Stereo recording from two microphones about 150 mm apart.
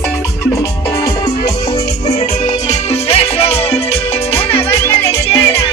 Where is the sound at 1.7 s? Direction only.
50° left (ahead or behind).